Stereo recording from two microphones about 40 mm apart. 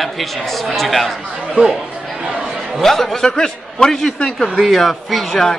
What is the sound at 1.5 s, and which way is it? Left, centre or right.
Speech, centre.